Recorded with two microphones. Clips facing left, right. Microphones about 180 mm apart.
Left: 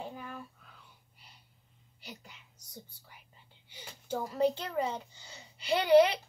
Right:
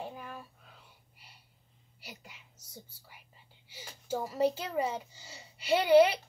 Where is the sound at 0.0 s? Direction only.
5° right (ahead or behind).